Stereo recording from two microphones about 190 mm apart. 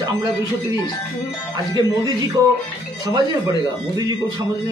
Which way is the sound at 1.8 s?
20° right (ahead or behind).